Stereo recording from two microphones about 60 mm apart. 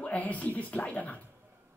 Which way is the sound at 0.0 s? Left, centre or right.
Left.